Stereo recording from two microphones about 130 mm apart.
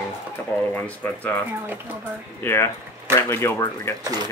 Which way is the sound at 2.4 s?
20° left (ahead or behind).